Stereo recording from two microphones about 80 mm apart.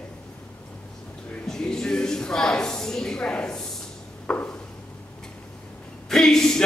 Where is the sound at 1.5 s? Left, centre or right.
Centre.